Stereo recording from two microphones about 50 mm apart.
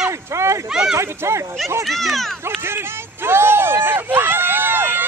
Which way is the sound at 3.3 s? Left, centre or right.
Right.